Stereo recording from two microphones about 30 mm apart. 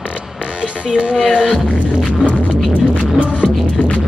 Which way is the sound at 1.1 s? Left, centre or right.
Left.